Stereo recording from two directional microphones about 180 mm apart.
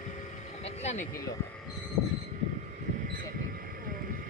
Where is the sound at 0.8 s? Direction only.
40° left (ahead or behind).